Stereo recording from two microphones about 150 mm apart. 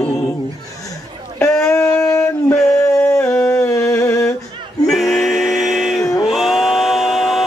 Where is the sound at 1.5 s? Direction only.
5° left (ahead or behind).